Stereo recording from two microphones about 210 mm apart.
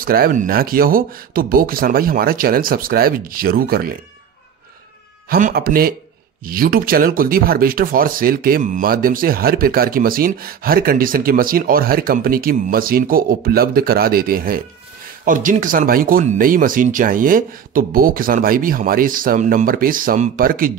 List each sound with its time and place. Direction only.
0.0 s speech: 45° right (ahead or behind)
5.3 s speech: 45° right (ahead or behind)